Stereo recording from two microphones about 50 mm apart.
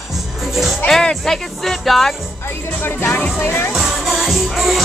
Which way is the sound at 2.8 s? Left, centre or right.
Left.